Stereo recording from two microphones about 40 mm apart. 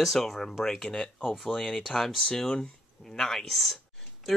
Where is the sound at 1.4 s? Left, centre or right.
Centre.